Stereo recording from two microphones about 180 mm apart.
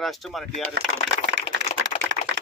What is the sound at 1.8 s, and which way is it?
Typing, 90° right.